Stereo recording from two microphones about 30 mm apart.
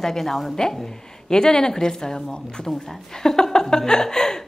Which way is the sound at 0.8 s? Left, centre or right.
Left.